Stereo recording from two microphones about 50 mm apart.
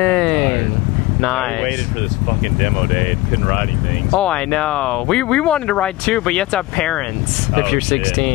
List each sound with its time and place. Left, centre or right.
0.0 s a sound: centre
1.2 s speech: centre
4.1 s speech: centre